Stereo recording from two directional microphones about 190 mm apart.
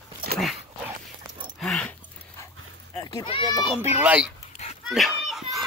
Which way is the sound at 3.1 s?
25° left (ahead or behind).